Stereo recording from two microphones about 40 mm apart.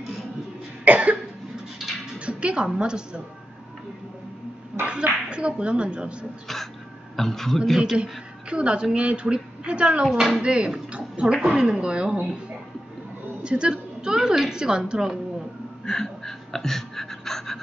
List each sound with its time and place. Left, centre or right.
0.8 s cough: right
1.8 s cat: centre
2.1 s music: right
4.8 s a woman's voice: right
6.4 s a man's voice: centre
8.0 s a woman's voice: right
11.4 s a woman's voice: centre
13.4 s a woman's voice: right
15.8 s a sound: centre